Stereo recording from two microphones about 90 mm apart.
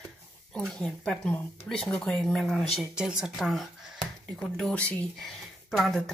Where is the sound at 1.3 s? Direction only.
20° left (ahead or behind).